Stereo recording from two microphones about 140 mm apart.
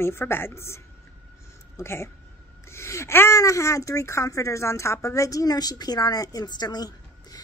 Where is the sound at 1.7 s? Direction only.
20° left (ahead or behind).